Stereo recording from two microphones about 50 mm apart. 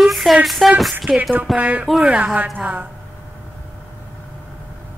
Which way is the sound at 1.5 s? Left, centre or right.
Right.